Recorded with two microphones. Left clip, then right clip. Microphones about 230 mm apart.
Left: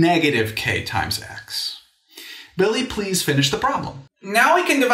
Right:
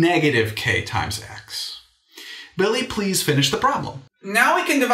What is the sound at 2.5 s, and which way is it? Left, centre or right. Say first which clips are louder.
Speech: left 1 dB; left.